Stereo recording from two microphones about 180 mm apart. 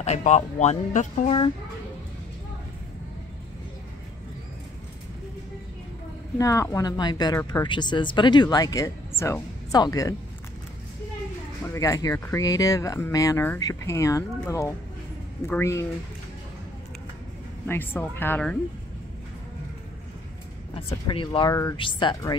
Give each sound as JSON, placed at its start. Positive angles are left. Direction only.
{"t": 0.0, "sound": "speech", "side_deg": 40}
{"t": 6.3, "sound": "speech", "side_deg": 15}
{"t": 11.7, "sound": "speech", "side_deg": 20}
{"t": 15.4, "sound": "speech", "side_deg": 15}
{"t": 17.6, "sound": "speech", "side_deg": 10}
{"t": 20.7, "sound": "speech", "side_deg": 30}